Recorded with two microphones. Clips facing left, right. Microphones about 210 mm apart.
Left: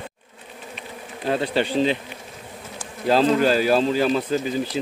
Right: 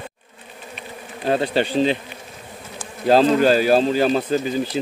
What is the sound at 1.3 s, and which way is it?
Speech, 45° right (ahead or behind).